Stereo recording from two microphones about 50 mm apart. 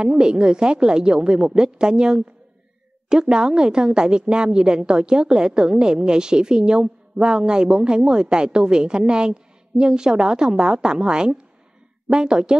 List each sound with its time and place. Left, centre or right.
0.0 s a woman's voice: centre